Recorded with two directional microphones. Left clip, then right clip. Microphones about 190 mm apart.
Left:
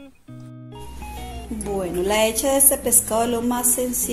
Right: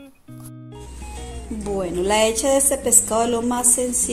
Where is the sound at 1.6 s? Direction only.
10° right (ahead or behind).